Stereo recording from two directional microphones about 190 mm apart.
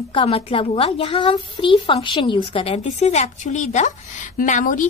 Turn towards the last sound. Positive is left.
turn(degrees=40)  # may be behind; listen again after turning